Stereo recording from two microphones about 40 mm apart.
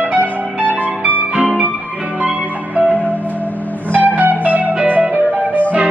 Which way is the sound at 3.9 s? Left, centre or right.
Right.